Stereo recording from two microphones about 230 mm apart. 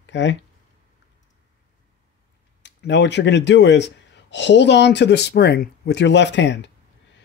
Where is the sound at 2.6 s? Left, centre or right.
Left.